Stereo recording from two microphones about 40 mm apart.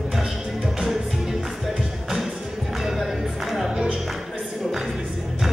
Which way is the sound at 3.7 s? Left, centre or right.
Right.